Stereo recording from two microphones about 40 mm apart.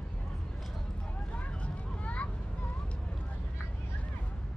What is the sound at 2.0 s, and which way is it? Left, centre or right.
Vehicle, left.